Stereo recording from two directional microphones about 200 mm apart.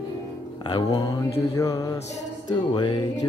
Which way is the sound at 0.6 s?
20° left (ahead or behind).